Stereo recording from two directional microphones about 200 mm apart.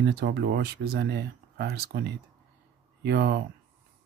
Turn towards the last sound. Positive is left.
turn(degrees=-55)  # may be behind; listen again after turning